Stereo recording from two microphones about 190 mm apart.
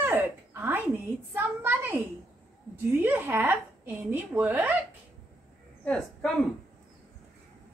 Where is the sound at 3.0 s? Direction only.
10° right (ahead or behind).